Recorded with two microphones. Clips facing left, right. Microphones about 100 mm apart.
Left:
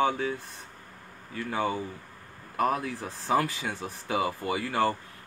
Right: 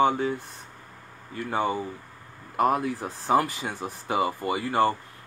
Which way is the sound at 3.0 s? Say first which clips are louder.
Right 3 dB; 45° right (ahead or behind).